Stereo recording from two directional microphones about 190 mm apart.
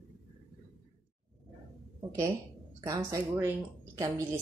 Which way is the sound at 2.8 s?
15° right (ahead or behind).